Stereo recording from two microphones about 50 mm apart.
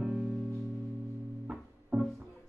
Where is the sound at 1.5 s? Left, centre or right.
Right.